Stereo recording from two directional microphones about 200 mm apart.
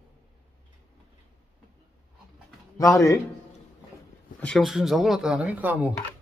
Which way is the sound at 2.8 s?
15° left (ahead or behind).